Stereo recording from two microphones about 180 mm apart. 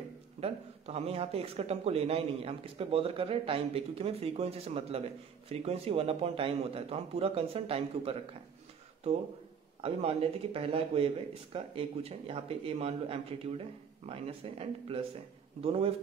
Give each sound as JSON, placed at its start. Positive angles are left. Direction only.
{"t": 0.4, "sound": "a man's voice", "side_deg": -35}
{"t": 9.8, "sound": "a man's voice", "side_deg": -30}